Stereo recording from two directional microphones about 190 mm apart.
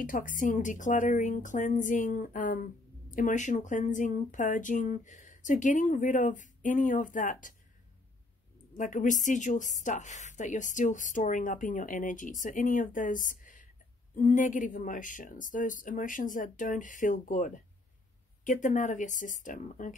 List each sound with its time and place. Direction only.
0.0 s a woman's voice: 45° left (ahead or behind)
8.7 s a woman's voice: 45° left (ahead or behind)